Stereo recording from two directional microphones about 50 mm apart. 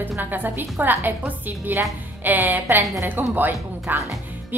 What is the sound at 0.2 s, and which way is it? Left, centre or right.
A woman's voice, right.